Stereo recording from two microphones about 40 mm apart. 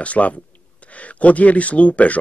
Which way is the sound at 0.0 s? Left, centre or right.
Left.